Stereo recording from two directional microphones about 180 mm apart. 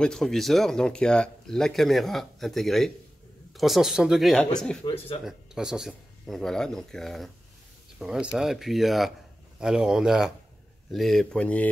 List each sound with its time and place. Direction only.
0.0 s speech: centre (ahead or behind)
4.8 s speech: 30° left (ahead or behind)
5.2 s speech: 5° right (ahead or behind)